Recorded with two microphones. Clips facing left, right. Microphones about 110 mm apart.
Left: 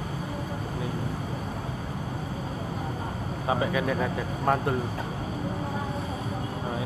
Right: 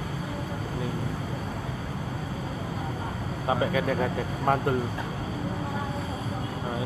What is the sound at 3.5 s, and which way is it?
Speech, 45° right (ahead or behind).